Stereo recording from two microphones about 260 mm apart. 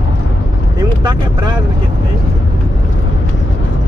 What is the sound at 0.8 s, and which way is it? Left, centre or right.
Speech, centre.